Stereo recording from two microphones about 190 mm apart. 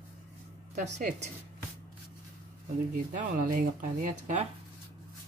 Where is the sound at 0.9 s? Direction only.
40° right (ahead or behind).